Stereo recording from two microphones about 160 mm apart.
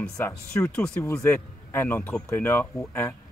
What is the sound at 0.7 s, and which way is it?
Speech, 5° left (ahead or behind).